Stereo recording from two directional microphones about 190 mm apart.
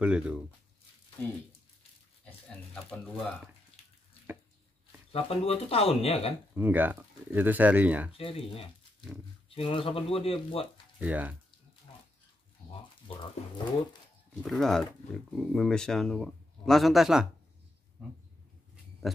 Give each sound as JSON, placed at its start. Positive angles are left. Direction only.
{"t": 0.0, "sound": "speech", "side_deg": -5}
{"t": 2.7, "sound": "speech", "side_deg": 5}
{"t": 5.1, "sound": "speech", "side_deg": 30}
{"t": 6.5, "sound": "speech", "side_deg": -10}
{"t": 8.1, "sound": "speech", "side_deg": 30}
{"t": 11.0, "sound": "speech", "side_deg": -10}
{"t": 14.4, "sound": "speech", "side_deg": 0}